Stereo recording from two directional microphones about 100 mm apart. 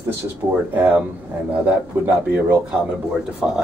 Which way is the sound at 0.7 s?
15° right (ahead or behind).